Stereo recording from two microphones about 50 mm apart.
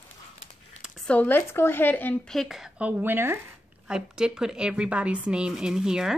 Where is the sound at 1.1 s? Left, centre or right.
Left.